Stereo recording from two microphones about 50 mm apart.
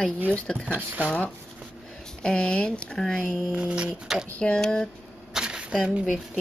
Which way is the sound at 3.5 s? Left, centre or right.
Right.